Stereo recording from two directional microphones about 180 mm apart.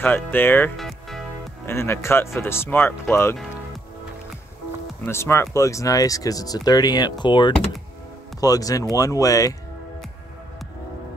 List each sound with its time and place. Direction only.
0.0 s speech: 10° left (ahead or behind)
0.7 s music: centre (ahead or behind)
1.7 s speech: 15° left (ahead or behind)
5.0 s speech: 15° left (ahead or behind)